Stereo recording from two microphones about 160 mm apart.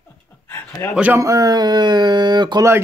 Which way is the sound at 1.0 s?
15° right (ahead or behind).